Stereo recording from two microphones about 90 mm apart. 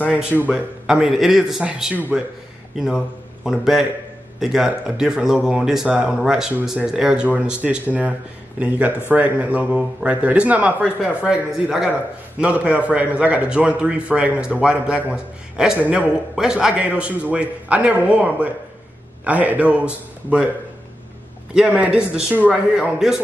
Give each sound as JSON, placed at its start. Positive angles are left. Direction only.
{"t": 0.0, "sound": "a man's voice", "side_deg": -15}
{"t": 21.5, "sound": "a man's voice", "side_deg": -15}